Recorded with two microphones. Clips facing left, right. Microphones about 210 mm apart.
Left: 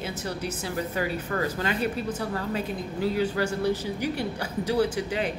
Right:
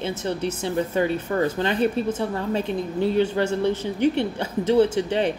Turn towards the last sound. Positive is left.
turn(degrees=-25)  # may be behind; listen again after turning